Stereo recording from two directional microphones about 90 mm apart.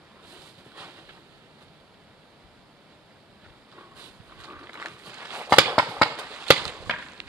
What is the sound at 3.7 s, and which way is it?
Walk, 15° right (ahead or behind).